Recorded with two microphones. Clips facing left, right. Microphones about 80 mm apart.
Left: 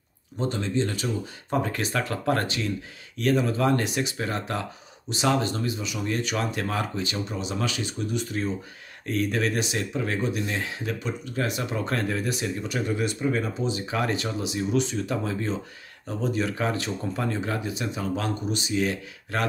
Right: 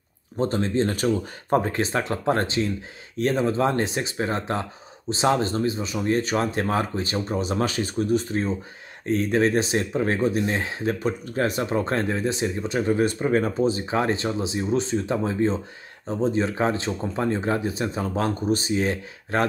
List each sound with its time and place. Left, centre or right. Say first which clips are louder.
0.4 s speech: right 4 dB; right
1.6 s speech: right 3 dB; right